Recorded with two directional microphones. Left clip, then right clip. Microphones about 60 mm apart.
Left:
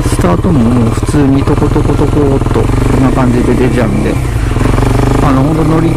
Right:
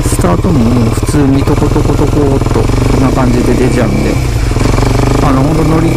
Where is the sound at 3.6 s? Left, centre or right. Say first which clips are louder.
Even; centre.